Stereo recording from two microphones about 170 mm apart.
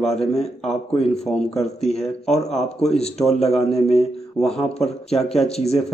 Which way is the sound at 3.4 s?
Centre (ahead or behind).